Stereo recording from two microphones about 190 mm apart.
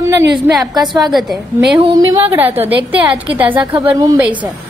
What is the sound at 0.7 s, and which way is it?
Speech, 20° right (ahead or behind).